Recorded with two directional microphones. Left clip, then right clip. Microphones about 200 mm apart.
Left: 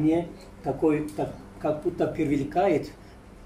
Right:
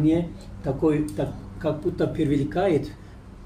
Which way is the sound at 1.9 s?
5° left (ahead or behind).